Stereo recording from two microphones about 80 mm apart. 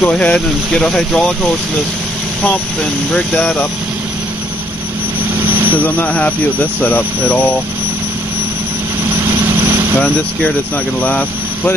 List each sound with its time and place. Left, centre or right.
0.0 s speech: centre
3.1 s speech: centre
5.9 s speech: centre
11.0 s speech: centre